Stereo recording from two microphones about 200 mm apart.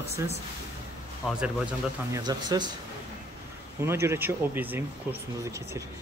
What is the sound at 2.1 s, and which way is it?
Speech, 20° right (ahead or behind).